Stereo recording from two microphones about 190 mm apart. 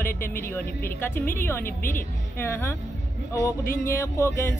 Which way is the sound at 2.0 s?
10° left (ahead or behind).